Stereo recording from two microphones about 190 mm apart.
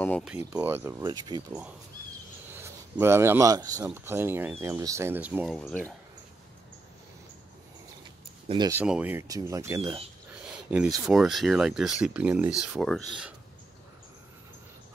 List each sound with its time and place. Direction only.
0.4 s speech: 15° right (ahead or behind)
2.5 s speech: 15° right (ahead or behind)
5.6 s speech: 5° left (ahead or behind)
8.5 s speech: 20° right (ahead or behind)
8.7 s speech: 5° right (ahead or behind)
10.4 s a sound: 5° right (ahead or behind)
11.1 s speech: centre (ahead or behind)